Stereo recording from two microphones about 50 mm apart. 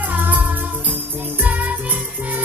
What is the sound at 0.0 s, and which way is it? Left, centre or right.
Music, right.